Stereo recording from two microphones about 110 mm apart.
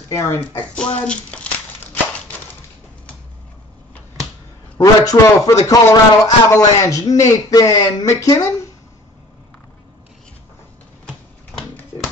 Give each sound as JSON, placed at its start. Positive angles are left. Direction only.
{"t": 0.1, "sound": "speech", "side_deg": 25}
{"t": 0.7, "sound": "a child's voice", "side_deg": 10}
{"t": 4.7, "sound": "a man's voice", "side_deg": 30}